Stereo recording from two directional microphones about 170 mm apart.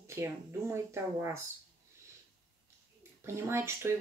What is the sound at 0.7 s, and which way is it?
Speech, 15° right (ahead or behind).